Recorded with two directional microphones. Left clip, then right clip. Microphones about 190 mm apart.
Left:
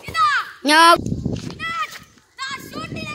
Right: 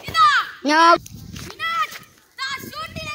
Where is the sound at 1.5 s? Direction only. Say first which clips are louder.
Right 4 dB; 50° right (ahead or behind).